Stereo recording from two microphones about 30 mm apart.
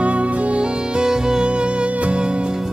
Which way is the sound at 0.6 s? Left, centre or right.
Right.